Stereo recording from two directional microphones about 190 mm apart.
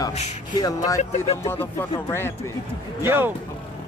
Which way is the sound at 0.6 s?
20° left (ahead or behind).